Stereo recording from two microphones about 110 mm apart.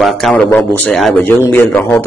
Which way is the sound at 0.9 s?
Centre (ahead or behind).